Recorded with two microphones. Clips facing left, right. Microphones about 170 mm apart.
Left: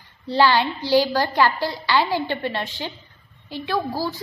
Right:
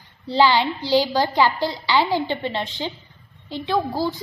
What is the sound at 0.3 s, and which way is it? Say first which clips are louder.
A woman's voice: right 1 dB; 15° right (ahead or behind).